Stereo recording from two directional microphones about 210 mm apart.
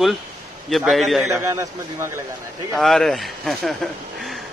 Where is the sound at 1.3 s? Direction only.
15° right (ahead or behind).